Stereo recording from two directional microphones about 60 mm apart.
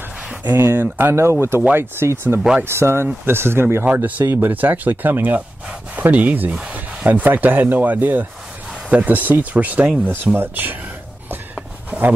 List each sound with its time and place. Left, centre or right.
0.4 s speech: right
3.8 s speech: right